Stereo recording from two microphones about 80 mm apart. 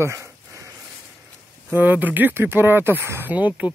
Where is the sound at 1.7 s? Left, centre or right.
Right.